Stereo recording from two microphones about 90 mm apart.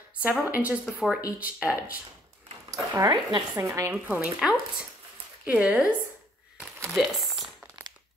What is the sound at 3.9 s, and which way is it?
Speech, 15° right (ahead or behind).